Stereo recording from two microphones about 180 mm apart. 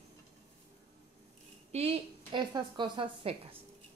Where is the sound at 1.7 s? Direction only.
35° right (ahead or behind).